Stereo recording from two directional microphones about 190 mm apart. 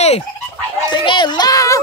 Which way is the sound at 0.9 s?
25° left (ahead or behind).